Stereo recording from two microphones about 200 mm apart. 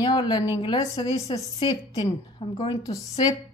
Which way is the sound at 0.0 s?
20° left (ahead or behind).